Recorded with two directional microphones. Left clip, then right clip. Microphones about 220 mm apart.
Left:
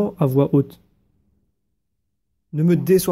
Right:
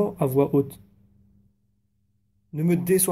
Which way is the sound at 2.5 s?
40° left (ahead or behind).